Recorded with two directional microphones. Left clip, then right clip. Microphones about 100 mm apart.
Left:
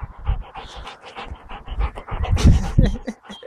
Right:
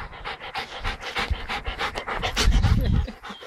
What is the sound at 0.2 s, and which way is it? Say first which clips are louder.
Pant: right 5 dB; 20° right (ahead or behind).